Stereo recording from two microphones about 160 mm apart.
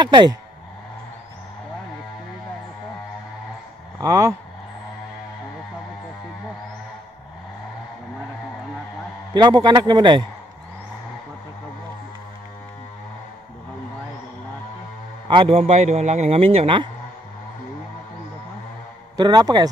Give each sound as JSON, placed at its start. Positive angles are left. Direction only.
{"t": 0.0, "sound": "a man's voice", "side_deg": -30}
{"t": 4.0, "sound": "a man's voice", "side_deg": -20}
{"t": 9.3, "sound": "a man's voice", "side_deg": -25}
{"t": 15.2, "sound": "a man's voice", "side_deg": -30}
{"t": 15.5, "sound": "a man's voice", "side_deg": -45}
{"t": 19.1, "sound": "a man's voice", "side_deg": -25}